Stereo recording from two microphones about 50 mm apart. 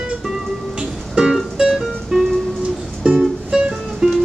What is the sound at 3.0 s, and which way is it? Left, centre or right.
Music, right.